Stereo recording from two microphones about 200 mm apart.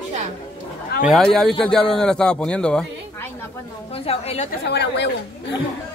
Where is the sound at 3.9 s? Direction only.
30° left (ahead or behind).